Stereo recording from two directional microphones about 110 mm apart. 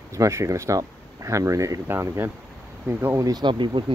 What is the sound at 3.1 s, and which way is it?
Speech, 35° right (ahead or behind).